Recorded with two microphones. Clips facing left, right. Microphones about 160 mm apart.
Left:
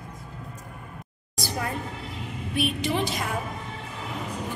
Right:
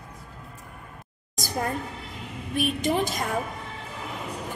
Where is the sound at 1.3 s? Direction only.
45° right (ahead or behind).